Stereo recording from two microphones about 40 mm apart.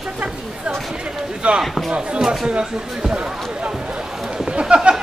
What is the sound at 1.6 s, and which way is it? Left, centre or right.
Speech, centre.